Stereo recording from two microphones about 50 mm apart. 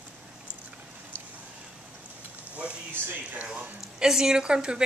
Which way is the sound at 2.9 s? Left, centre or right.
Right.